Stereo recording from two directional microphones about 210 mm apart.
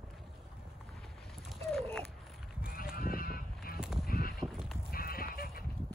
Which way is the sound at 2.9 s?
45° left (ahead or behind).